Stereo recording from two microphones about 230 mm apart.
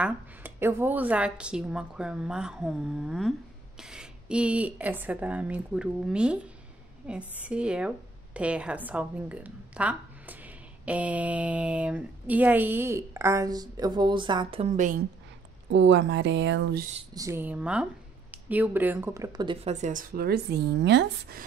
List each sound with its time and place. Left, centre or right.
0.0 s a woman's voice: centre; by 15.0 s right
15.7 s speech: right
17.1 s a woman's voice: centre; by 21.5 s right